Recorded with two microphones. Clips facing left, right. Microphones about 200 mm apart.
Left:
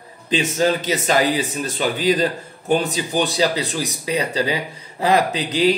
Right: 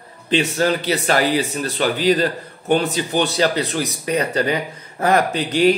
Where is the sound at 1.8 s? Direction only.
40° right (ahead or behind).